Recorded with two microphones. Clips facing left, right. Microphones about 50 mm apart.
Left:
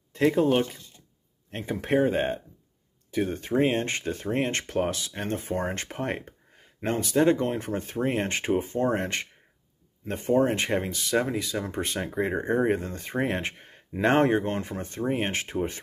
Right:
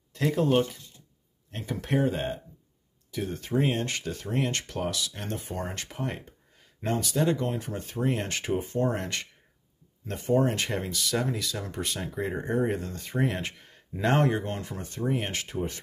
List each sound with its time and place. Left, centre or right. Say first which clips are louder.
0.1 s speech: left 4 dB; left
1.5 s speech: left 4 dB; left
6.8 s speech: left 4 dB; left